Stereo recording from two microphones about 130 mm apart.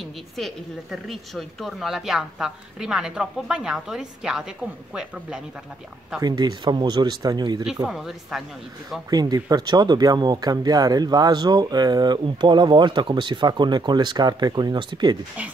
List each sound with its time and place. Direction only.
1.0 s a woman's voice: centre (ahead or behind)
6.2 s speech: 35° right (ahead or behind)
7.8 s a woman's voice: 5° right (ahead or behind)
9.1 s speech: 30° right (ahead or behind)